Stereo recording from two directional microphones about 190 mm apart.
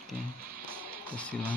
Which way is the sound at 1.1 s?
5° left (ahead or behind).